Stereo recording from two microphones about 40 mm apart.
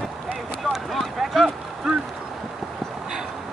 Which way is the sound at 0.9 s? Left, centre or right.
Centre.